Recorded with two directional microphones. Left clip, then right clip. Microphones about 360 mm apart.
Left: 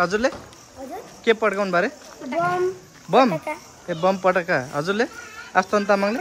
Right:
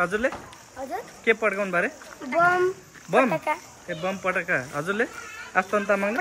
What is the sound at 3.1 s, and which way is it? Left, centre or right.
Speech, centre.